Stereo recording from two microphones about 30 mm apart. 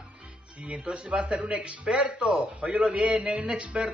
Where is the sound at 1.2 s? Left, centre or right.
Right.